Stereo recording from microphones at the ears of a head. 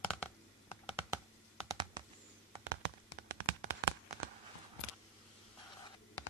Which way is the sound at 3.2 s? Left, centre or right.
Right.